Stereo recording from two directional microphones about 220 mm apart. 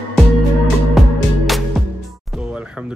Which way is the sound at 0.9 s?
Centre (ahead or behind).